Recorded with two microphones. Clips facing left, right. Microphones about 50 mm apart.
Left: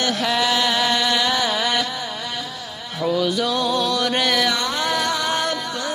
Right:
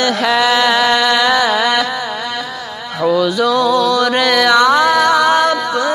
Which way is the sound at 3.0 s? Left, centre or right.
Right.